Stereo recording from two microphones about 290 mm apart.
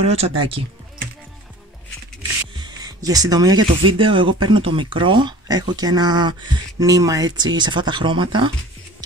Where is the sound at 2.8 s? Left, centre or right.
Centre.